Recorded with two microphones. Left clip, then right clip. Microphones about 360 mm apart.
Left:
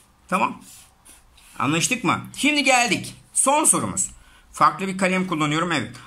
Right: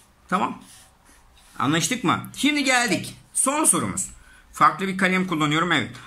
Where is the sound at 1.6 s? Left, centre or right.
Centre.